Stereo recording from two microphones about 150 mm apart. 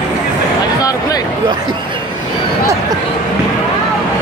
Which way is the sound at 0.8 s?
25° left (ahead or behind).